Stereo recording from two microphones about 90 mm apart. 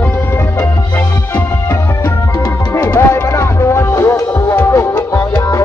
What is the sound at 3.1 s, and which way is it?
Music, 40° left (ahead or behind).